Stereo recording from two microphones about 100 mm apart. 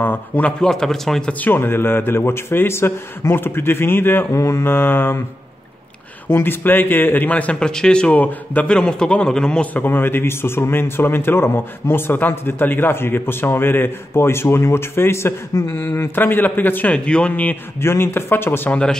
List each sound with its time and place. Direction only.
0.0 s a man's voice: 20° left (ahead or behind)
0.6 s a man's voice: 5° left (ahead or behind)
1.4 s speech: 20° left (ahead or behind)
6.2 s speech: 20° left (ahead or behind)